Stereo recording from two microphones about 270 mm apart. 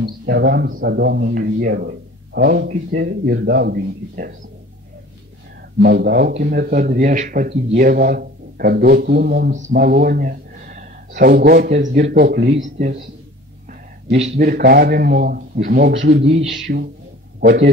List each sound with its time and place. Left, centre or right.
0.0 s a man's voice: right
5.8 s a man's voice: right
13.7 s a sound: right
14.4 s a man's voice: right